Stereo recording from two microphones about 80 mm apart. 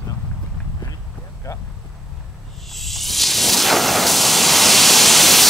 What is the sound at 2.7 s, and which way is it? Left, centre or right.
Hiss, centre.